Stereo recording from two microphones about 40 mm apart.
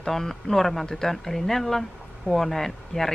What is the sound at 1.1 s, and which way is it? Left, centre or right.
Speech, centre.